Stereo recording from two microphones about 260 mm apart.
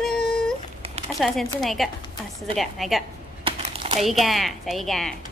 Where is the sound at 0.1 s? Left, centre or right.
Left.